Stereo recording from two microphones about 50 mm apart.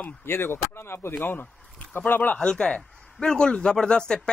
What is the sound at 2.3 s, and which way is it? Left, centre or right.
A man's voice, centre.